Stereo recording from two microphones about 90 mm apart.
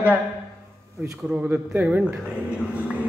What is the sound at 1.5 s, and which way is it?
Speech, 15° right (ahead or behind).